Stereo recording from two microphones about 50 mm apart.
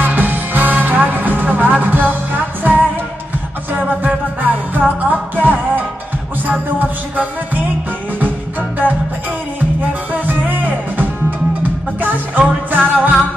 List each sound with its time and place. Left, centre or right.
0.0 s music: right
4.0 s music: right
10.1 s music: right